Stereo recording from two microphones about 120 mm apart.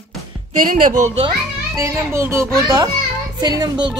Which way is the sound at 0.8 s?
90° right.